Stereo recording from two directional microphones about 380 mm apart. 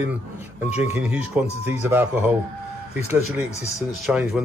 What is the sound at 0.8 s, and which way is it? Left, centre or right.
Speech, centre.